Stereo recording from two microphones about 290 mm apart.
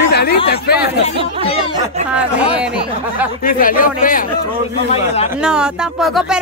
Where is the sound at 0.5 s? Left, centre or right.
Left.